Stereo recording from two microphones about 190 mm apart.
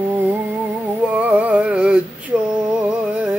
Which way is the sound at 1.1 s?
5° right (ahead or behind).